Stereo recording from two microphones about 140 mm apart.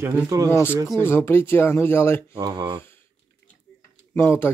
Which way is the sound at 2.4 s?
30° right (ahead or behind).